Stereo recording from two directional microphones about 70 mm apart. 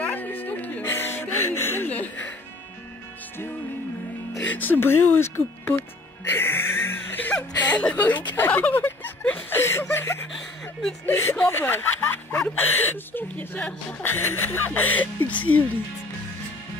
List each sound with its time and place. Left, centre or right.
0.0 s music: left
0.8 s music: left
4.5 s music: left
9.6 s a woman's voice: left